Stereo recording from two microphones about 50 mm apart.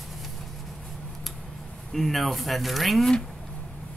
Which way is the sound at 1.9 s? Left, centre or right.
Centre.